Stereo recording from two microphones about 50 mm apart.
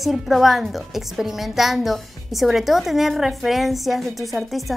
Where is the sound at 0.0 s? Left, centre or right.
Centre.